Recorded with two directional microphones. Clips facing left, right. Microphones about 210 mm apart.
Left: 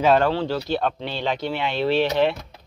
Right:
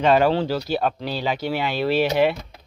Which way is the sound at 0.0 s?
Centre (ahead or behind).